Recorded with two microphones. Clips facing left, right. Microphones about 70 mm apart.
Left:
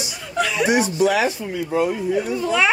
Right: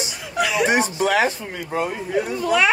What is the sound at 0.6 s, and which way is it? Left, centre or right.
Speech, right.